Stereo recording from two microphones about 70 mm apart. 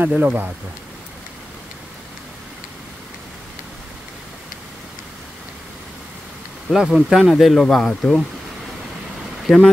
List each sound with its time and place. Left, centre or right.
0.0 s speech: centre
6.7 s speech: centre
9.5 s speech: centre